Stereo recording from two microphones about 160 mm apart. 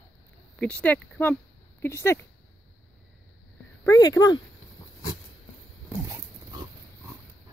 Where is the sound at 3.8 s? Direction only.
20° left (ahead or behind).